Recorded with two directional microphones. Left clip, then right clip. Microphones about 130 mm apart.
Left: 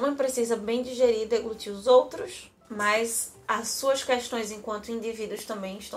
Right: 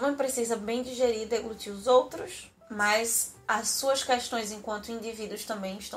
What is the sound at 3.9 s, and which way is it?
Speech, 20° left (ahead or behind).